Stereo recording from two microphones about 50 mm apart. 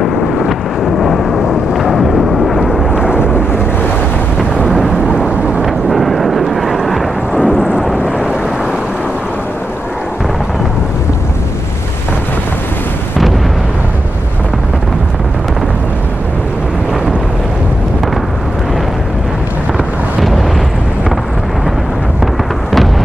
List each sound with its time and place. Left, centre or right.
0.0 s vehicle: centre
2.9 s thunder: centre
4.6 s a sound: centre
5.9 s vehicle: centre
20.2 s eruption: centre
22.2 s a sound: centre